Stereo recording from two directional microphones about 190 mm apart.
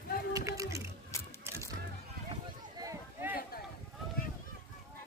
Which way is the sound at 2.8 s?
15° right (ahead or behind).